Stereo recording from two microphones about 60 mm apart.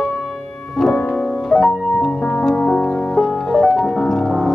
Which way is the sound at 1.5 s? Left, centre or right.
Centre.